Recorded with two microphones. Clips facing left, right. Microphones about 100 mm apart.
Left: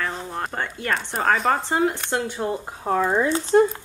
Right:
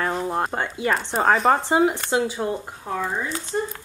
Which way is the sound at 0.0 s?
30° right (ahead or behind).